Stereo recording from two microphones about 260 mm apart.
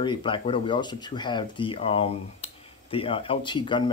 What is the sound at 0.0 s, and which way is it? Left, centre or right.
Speech, centre.